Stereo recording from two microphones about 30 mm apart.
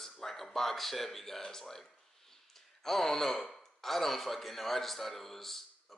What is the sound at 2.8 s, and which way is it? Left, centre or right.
A man's voice, centre.